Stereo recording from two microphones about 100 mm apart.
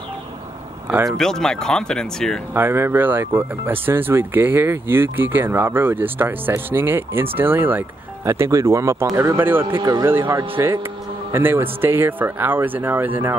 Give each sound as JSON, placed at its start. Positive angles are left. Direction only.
{"t": 1.1, "sound": "speech", "side_deg": 5}
{"t": 2.5, "sound": "speech", "side_deg": -25}
{"t": 8.3, "sound": "speech", "side_deg": -30}